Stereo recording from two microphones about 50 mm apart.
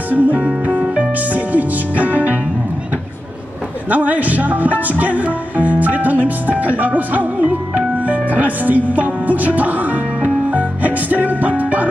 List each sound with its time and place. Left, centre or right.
0.1 s music: right
3.9 s music: right